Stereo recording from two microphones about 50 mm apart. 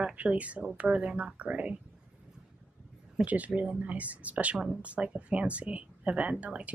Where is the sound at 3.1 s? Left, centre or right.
Right.